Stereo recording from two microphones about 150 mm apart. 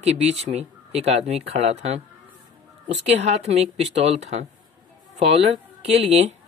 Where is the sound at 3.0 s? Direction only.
45° right (ahead or behind).